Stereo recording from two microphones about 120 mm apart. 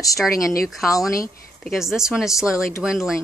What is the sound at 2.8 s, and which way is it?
Speech, 5° right (ahead or behind).